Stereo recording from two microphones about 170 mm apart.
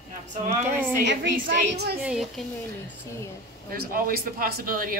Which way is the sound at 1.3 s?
60° right (ahead or behind).